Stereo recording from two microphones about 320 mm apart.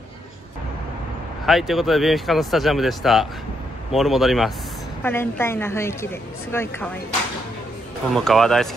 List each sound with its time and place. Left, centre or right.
1.4 s a woman's voice: centre
8.1 s speech: centre